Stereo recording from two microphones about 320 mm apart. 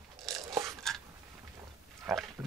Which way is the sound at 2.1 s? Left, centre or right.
Centre.